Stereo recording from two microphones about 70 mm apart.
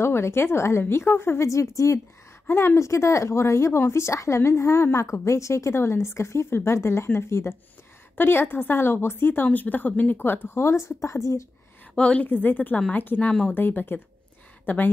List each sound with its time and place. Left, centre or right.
0.0 s speech: left
2.4 s speech: left
2.8 s a woman's voice: left
10.6 s speech: left
11.9 s a woman's voice: centre
13.3 s speech: centre
13.6 s a woman's voice: left